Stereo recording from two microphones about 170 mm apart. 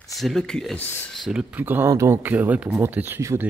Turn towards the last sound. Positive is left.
turn(degrees=-15)  # may be behind; listen again after turning